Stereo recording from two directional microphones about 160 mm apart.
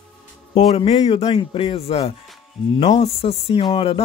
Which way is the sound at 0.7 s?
35° left (ahead or behind).